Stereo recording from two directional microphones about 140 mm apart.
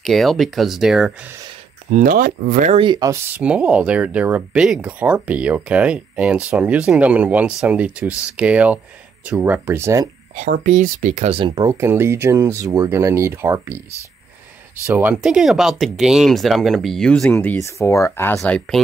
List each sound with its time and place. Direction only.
0.0 s speech: centre (ahead or behind)
1.9 s speech: 65° right (ahead or behind)
2.7 s speech: 35° right (ahead or behind)
3.1 s speech: 10° right (ahead or behind)
10.3 s speech: 65° right (ahead or behind); by 11.5 s 45° right (ahead or behind)
11.5 s speech: 25° right (ahead or behind)
14.9 s speech: 15° right (ahead or behind); by 18.4 s 20° left (ahead or behind)
18.4 s speech: 5° left (ahead or behind)